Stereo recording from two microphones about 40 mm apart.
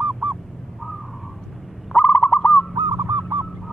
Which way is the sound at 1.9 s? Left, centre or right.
Left.